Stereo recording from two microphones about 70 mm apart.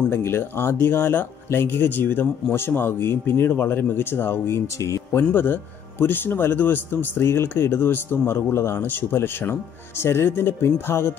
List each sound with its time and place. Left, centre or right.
0.1 s speech: left
4.7 s speech: left
5.1 s speech: left